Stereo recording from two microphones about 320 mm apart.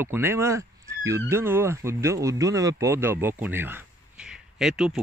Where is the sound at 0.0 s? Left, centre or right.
Centre.